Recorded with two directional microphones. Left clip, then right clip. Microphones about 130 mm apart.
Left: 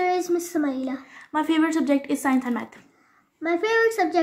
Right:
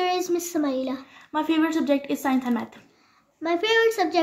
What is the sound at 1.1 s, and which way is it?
A woman's voice, 10° left (ahead or behind).